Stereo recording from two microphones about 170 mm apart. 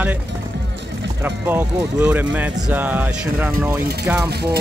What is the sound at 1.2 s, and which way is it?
Speech, 10° right (ahead or behind).